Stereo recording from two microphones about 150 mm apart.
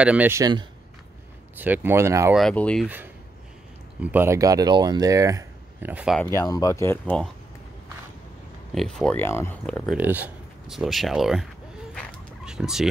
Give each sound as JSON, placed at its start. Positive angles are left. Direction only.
{"t": 0.0, "sound": "speech", "side_deg": -10}
{"t": 0.4, "sound": "speech", "side_deg": -30}
{"t": 1.6, "sound": "speech", "side_deg": -10}
{"t": 2.3, "sound": "speech", "side_deg": 5}
{"t": 4.0, "sound": "speech", "side_deg": -15}
{"t": 6.3, "sound": "speech", "side_deg": 25}
{"t": 8.7, "sound": "speech", "side_deg": 5}
{"t": 9.2, "sound": "speech", "side_deg": 15}
{"t": 9.8, "sound": "speech", "side_deg": -10}
{"t": 12.4, "sound": "turkey", "side_deg": -5}